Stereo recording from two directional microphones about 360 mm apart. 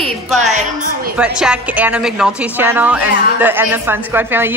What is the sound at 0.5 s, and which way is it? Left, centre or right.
Speech, right.